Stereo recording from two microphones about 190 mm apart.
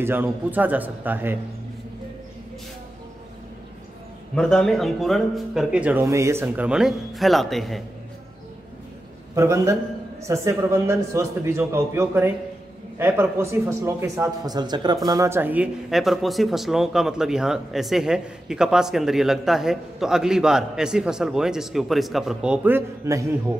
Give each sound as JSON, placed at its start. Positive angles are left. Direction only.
{"t": 0.0, "sound": "a man's voice", "side_deg": -10}
{"t": 4.4, "sound": "speech", "side_deg": 5}
{"t": 9.3, "sound": "a man's voice", "side_deg": -15}